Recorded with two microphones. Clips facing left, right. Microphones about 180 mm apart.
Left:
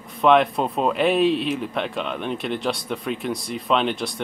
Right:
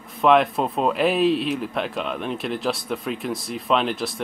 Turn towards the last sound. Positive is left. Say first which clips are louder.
# even
turn(degrees=0)  # may be behind; listen again after turning